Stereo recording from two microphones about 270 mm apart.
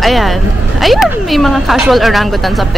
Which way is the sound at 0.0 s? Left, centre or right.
Centre.